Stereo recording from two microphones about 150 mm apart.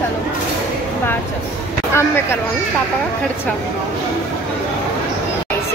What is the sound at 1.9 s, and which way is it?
Speech, 15° left (ahead or behind).